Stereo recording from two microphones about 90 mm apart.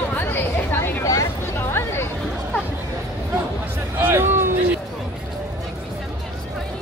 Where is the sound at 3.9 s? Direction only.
25° right (ahead or behind).